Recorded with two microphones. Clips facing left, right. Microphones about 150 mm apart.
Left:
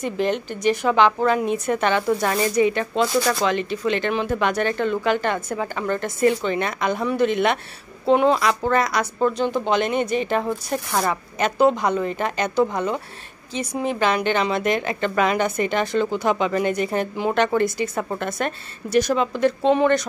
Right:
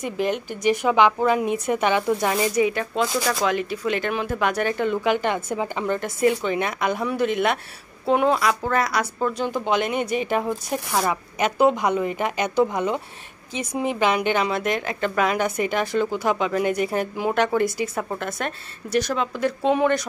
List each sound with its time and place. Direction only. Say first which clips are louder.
0.0 s speech: left 2 dB; 10° right (ahead or behind)